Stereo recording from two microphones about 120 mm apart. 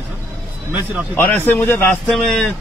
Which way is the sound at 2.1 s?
5° left (ahead or behind).